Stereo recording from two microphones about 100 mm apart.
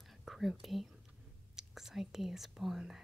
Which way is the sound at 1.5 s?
5° right (ahead or behind).